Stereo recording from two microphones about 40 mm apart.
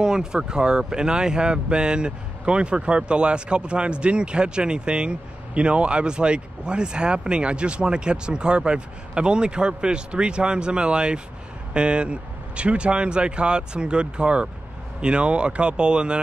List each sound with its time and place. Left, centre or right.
0.0 s speech: centre